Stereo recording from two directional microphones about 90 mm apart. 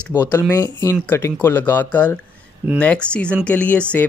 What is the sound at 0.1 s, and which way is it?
Speech, 30° left (ahead or behind).